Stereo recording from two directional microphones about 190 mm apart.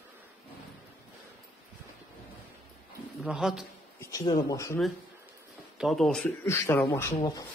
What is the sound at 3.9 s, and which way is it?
Speech, 20° left (ahead or behind).